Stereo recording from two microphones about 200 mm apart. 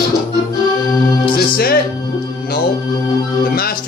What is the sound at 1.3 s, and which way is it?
Speech, 50° left (ahead or behind).